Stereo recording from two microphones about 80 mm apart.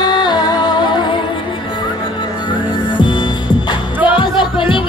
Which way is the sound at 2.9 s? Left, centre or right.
Left.